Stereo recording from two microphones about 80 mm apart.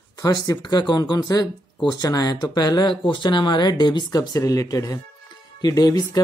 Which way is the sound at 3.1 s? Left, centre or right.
Left.